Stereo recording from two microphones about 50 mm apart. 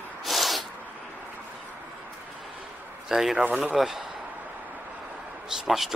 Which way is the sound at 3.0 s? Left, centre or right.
Centre.